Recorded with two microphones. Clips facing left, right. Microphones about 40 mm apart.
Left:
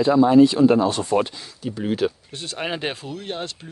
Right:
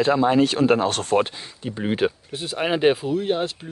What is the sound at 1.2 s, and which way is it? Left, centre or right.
Speech, right.